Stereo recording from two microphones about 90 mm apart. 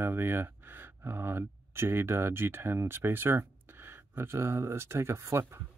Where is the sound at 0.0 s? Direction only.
25° right (ahead or behind).